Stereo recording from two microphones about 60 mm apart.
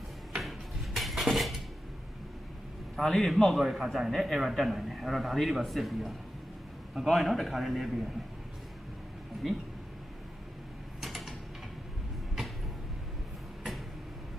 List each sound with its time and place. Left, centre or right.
0.3 s dishes: centre
3.0 s a man's voice: centre
11.0 s mechanisms: centre